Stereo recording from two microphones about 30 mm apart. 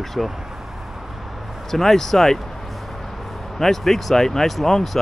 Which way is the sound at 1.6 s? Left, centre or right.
Centre.